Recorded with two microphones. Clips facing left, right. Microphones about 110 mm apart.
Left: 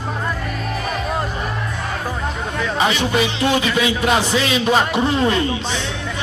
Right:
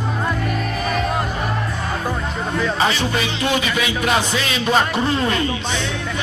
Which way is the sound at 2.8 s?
15° left (ahead or behind).